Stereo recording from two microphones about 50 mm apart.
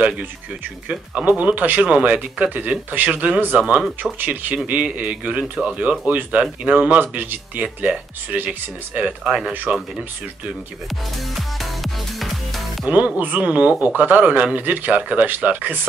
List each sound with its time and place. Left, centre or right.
0.8 s speech: right
5.4 s speech: right
11.6 s music: centre
12.8 s speech: right